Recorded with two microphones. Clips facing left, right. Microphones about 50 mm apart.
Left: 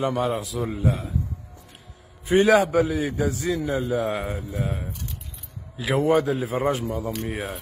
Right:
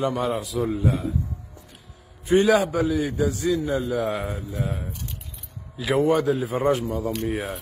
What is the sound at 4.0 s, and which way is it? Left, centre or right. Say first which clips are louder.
Speech: even; centre.